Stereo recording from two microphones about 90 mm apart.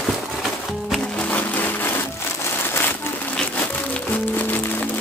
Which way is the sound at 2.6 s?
25° left (ahead or behind).